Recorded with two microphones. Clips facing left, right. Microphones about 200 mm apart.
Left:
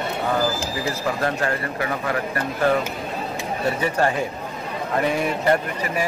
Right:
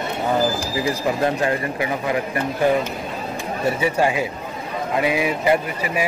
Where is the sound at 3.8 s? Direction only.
10° right (ahead or behind).